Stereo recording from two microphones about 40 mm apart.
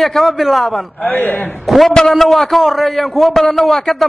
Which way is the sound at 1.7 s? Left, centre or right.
Centre.